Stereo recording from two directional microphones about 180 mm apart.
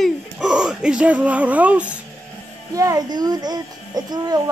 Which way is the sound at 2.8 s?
20° right (ahead or behind).